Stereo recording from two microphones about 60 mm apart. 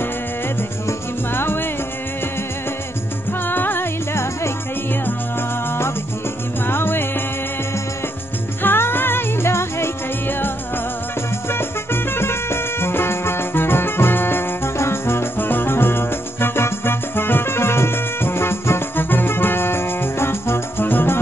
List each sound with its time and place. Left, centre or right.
1.3 s music: left
3.4 s music: left
4.1 s music: left
5.7 s music: left
8.6 s music: left
11.5 s music: left